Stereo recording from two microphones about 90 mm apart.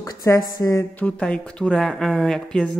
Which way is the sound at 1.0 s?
10° left (ahead or behind).